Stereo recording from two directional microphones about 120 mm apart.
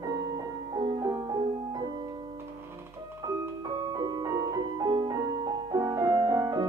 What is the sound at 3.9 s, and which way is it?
Music, 35° right (ahead or behind).